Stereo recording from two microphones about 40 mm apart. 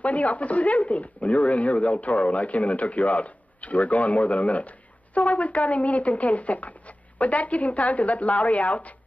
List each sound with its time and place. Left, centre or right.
0.0 s speech: left